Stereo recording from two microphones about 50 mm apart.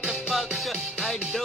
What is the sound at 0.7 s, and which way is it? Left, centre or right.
Music, centre.